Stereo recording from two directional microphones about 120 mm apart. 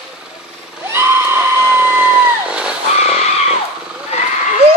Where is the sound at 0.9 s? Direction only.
20° right (ahead or behind).